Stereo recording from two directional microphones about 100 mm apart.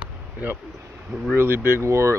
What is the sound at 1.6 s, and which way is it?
Speech, 25° right (ahead or behind).